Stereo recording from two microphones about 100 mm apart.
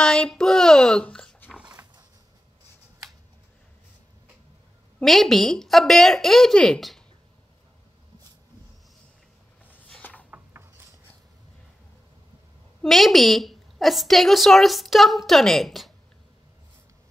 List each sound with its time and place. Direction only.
0.0 s speech: 10° left (ahead or behind)
1.5 s dog: 10° right (ahead or behind)
5.0 s a woman's voice: 5° left (ahead or behind)
9.7 s a sound: 15° left (ahead or behind)
10.3 s mechanisms: 25° right (ahead or behind)
12.8 s a woman's voice: centre (ahead or behind)